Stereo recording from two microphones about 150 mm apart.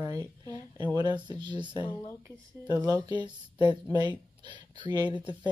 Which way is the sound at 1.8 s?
35° left (ahead or behind).